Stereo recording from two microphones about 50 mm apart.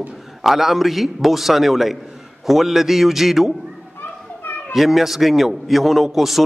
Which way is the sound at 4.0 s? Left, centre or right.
Left.